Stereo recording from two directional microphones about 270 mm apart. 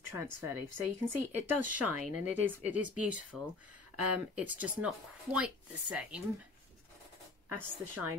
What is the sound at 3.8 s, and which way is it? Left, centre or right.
Speech, right.